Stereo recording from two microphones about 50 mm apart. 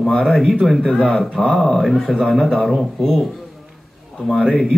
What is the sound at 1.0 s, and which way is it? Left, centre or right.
Speech, centre.